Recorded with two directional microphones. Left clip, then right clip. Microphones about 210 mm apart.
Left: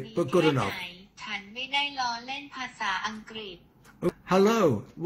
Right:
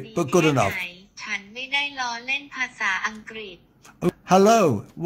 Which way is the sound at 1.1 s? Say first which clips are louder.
Right 5 dB; 10° right (ahead or behind).